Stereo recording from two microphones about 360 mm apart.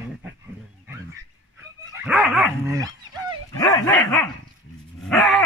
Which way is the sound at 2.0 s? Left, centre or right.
Centre.